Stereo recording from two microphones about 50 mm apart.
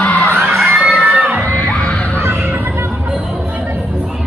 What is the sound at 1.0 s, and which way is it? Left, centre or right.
Children shouting, right.